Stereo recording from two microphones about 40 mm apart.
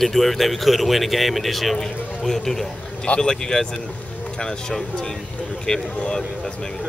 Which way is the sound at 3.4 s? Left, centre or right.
Centre.